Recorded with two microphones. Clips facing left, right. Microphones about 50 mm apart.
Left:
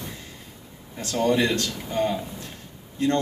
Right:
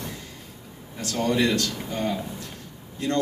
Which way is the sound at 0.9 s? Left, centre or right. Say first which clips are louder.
Left 2 dB; left.